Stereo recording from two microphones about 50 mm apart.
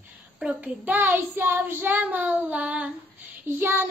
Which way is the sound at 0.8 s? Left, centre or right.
Right.